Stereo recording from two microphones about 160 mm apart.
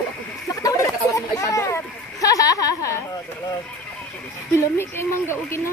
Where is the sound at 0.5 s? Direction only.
20° left (ahead or behind).